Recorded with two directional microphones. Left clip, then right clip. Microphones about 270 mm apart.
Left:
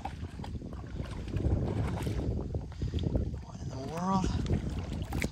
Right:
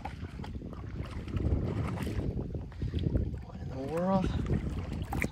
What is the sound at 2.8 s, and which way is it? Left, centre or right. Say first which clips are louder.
Boat: even; centre.